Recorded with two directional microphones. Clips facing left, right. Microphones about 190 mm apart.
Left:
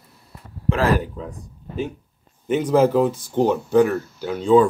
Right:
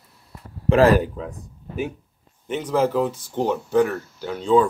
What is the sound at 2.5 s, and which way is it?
Speech, 10° left (ahead or behind).